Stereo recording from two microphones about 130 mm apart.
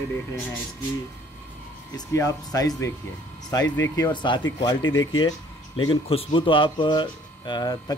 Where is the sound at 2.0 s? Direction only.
25° left (ahead or behind).